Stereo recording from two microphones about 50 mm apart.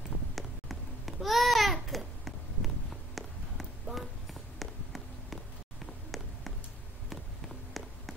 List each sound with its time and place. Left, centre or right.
0.4 s babbling: centre
3.9 s run: centre
6.1 s a sound: centre